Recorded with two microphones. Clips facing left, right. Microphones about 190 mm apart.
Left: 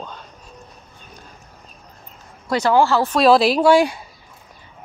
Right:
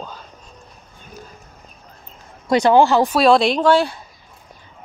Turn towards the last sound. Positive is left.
turn(degrees=10)  # may be behind; listen again after turning